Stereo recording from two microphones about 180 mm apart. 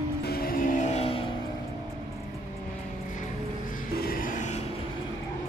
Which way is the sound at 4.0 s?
55° left (ahead or behind).